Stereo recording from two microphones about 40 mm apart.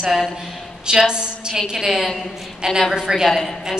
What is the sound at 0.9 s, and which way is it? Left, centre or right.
A woman's voice, centre.